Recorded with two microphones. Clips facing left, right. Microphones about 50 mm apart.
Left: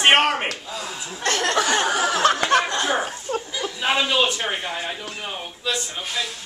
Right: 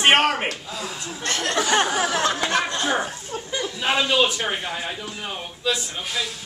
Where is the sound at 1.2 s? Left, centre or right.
Left.